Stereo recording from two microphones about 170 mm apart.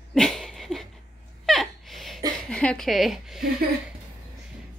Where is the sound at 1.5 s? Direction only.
Centre (ahead or behind).